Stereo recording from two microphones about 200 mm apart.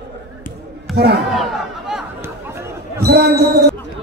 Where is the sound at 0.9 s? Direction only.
55° right (ahead or behind).